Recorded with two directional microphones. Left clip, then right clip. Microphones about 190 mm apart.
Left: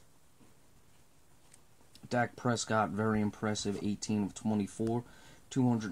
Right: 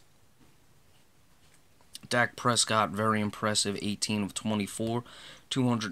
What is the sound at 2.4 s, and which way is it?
Speech, 10° right (ahead or behind).